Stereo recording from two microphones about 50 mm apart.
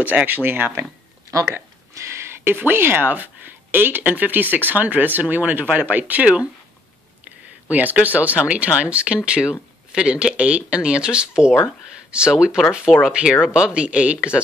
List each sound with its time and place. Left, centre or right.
0.0 s speech: right
2.0 s a sound: right
2.5 s speech: right
7.7 s speech: right